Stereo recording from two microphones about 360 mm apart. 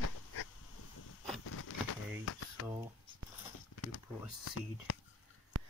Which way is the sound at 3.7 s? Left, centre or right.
Left.